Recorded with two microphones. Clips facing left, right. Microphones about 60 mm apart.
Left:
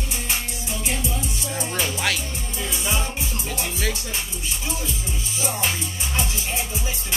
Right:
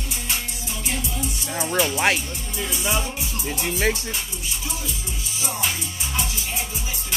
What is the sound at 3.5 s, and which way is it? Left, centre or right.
Music, right.